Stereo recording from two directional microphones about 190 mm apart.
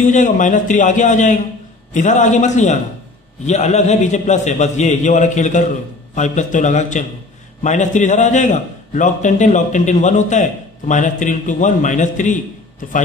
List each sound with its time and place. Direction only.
0.0 s a man's voice: 40° left (ahead or behind)